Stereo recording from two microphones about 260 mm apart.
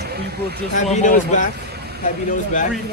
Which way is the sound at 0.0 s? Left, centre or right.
Right.